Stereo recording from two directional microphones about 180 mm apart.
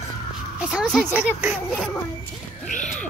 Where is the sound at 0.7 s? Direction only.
Centre (ahead or behind).